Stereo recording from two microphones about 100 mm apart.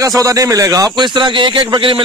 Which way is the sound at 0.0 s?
35° right (ahead or behind).